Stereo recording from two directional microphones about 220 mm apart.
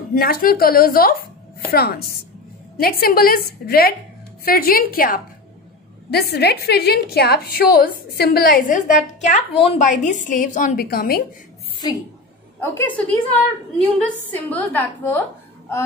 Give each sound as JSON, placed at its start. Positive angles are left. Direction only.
{"t": 0.1, "sound": "a woman's voice", "side_deg": 40}
{"t": 11.8, "sound": "a woman's voice", "side_deg": 20}
{"t": 12.5, "sound": "a woman's voice", "side_deg": 10}
{"t": 14.0, "sound": "a woman's voice", "side_deg": 5}